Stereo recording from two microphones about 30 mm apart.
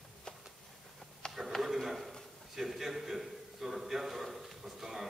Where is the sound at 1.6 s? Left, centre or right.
Centre.